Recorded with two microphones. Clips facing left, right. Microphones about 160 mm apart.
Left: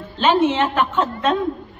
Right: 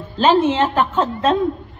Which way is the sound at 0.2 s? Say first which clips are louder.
Right 2 dB; 35° right (ahead or behind).